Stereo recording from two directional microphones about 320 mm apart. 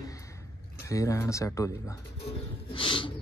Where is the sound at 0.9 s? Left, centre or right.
Centre.